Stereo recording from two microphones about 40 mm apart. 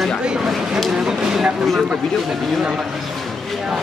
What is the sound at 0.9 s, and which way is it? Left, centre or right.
Speech, centre.